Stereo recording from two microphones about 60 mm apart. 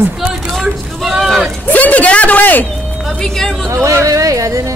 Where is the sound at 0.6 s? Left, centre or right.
Centre.